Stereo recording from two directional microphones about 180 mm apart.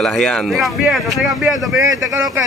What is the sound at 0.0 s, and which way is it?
Speech, 5° left (ahead or behind).